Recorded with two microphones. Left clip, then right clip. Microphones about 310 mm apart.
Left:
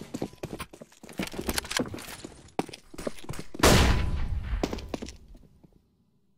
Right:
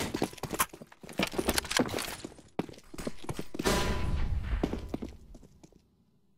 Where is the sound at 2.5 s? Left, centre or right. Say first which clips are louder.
Left 5 dB; centre.